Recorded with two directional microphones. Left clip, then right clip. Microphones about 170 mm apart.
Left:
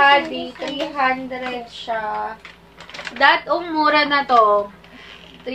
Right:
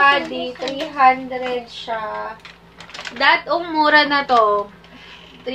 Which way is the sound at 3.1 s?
15° right (ahead or behind).